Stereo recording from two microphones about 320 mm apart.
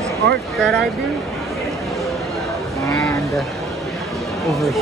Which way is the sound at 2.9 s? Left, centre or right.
Centre.